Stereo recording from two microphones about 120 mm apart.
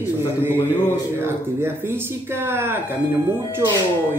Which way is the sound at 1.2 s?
20° right (ahead or behind).